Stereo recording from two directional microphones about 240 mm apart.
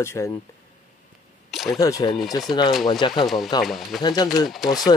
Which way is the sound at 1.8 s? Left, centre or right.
Centre.